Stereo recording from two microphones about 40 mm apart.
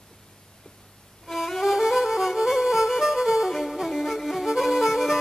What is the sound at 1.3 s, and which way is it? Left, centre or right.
Music, centre.